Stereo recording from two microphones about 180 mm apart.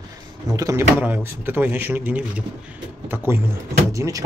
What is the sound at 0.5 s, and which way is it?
Speech, 20° right (ahead or behind).